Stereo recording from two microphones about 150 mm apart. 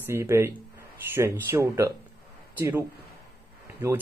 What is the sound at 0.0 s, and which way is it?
Speech, 15° right (ahead or behind).